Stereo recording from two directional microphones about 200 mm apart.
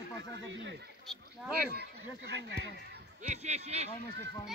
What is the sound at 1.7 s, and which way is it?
Speech, 55° right (ahead or behind).